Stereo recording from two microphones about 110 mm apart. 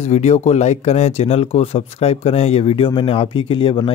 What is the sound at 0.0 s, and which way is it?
Speech, 75° left (ahead or behind).